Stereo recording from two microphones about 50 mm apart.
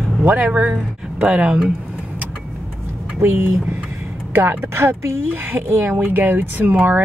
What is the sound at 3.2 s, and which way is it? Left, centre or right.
Speech, right.